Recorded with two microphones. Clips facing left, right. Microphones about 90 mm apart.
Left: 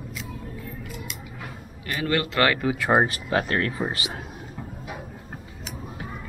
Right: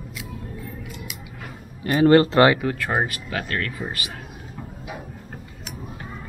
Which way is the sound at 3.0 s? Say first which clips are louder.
Left 4 dB; 30° left (ahead or behind).